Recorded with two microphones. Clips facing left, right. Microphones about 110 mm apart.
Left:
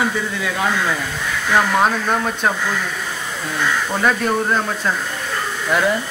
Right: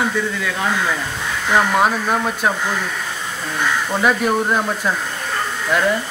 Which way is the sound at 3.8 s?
5° right (ahead or behind).